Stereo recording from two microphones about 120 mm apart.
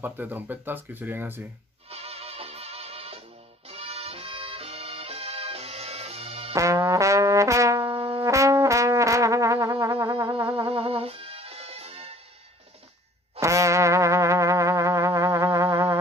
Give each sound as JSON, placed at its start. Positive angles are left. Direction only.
{"t": 0.0, "sound": "speech", "side_deg": -15}
{"t": 1.9, "sound": "music", "side_deg": -55}
{"t": 6.5, "sound": "music", "side_deg": -25}
{"t": 7.8, "sound": "music", "side_deg": -50}
{"t": 8.2, "sound": "music", "side_deg": -25}
{"t": 10.7, "sound": "music", "side_deg": -50}
{"t": 13.4, "sound": "music", "side_deg": -25}